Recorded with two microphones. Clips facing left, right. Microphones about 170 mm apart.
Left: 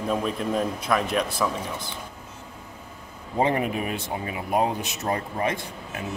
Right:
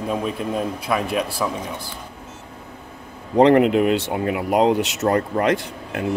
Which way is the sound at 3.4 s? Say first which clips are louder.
Right 10 dB; 75° right (ahead or behind).